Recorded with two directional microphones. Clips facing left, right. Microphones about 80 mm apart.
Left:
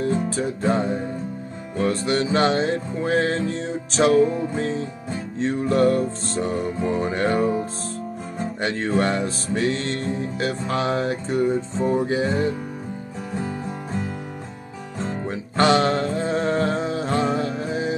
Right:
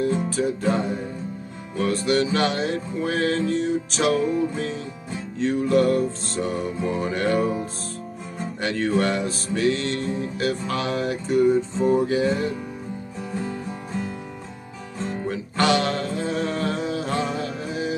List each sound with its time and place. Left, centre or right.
0.0 s music: left
8.5 s music: left
15.0 s music: left